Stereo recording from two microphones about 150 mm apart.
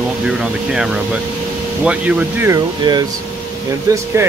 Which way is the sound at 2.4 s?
25° right (ahead or behind).